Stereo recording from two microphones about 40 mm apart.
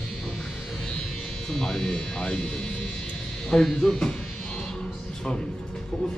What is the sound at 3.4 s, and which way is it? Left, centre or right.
Music, centre.